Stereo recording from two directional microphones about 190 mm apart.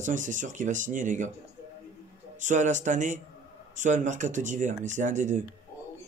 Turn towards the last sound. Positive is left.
turn(degrees=-40)  # may be behind; listen again after turning